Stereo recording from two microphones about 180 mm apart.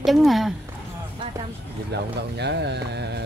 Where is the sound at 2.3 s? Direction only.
70° right (ahead or behind).